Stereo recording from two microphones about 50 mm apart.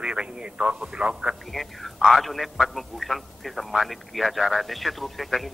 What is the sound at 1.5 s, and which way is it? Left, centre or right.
A man's voice, centre.